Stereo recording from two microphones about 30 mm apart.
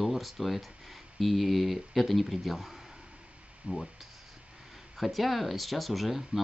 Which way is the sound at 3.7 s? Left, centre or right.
Right.